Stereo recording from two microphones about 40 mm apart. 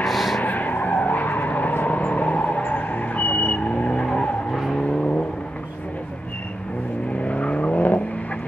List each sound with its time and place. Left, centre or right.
0.0 s skidding: centre
0.4 s vehicle: left
7.2 s vehicle: left